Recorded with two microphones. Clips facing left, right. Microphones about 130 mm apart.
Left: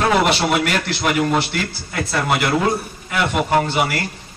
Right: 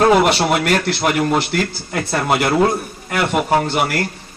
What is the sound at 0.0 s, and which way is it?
A man's voice, 45° right (ahead or behind).